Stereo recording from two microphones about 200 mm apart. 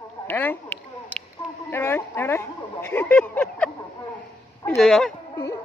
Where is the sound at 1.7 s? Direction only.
10° left (ahead or behind).